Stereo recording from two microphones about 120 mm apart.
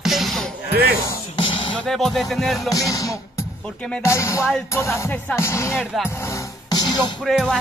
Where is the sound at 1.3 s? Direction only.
45° left (ahead or behind).